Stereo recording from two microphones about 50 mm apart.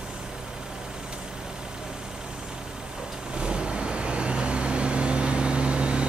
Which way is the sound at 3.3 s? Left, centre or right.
Centre.